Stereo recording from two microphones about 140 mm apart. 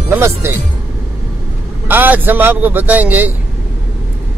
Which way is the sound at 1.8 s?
15° right (ahead or behind).